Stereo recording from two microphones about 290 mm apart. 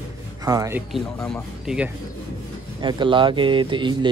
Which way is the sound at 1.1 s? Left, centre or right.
Centre.